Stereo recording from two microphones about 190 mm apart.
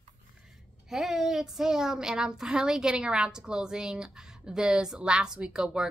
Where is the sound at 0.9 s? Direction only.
Centre (ahead or behind).